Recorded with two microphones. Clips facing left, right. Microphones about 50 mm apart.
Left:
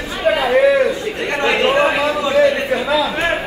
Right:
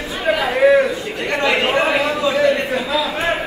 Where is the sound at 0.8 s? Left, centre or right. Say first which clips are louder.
Left 3 dB; left.